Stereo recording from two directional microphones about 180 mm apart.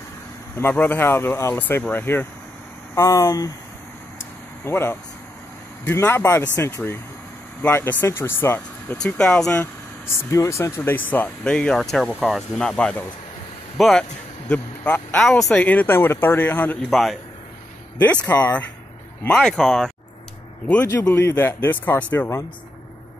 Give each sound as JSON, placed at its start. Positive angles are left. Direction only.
{"t": 0.6, "sound": "speech", "side_deg": 10}
{"t": 4.6, "sound": "a man's voice", "side_deg": 15}